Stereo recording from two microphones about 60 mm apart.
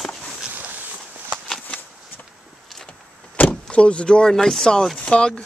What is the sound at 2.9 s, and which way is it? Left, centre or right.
Vehicle, left.